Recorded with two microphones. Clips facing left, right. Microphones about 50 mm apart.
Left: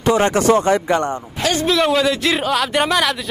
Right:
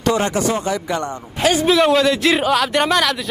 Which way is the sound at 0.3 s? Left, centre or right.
Left.